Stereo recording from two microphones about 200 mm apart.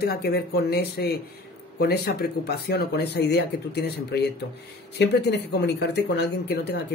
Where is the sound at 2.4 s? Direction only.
55° left (ahead or behind).